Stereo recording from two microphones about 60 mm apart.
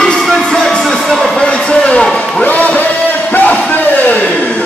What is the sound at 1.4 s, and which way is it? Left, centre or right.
Music, centre.